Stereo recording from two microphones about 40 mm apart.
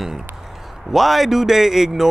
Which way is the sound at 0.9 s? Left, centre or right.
Centre.